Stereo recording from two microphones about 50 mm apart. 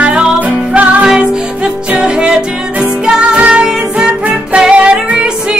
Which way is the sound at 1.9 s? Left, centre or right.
Centre.